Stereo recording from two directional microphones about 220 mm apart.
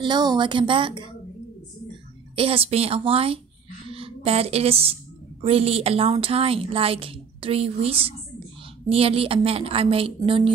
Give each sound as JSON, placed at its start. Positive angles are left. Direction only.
{"t": 0.0, "sound": "a woman's voice", "side_deg": -20}
{"t": 2.3, "sound": "a woman's voice", "side_deg": -25}